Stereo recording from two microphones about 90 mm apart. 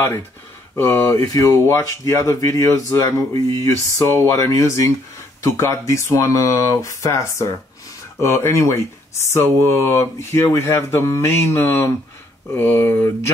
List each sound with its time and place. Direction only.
0.7 s speech: 25° left (ahead or behind)